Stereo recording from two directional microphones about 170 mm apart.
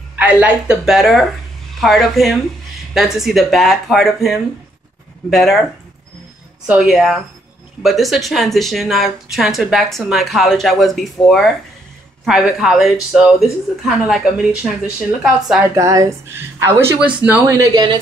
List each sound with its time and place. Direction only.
0.1 s a woman's voice: 10° right (ahead or behind)
6.7 s speech: 5° right (ahead or behind)
15.7 s a woman's voice: 20° right (ahead or behind)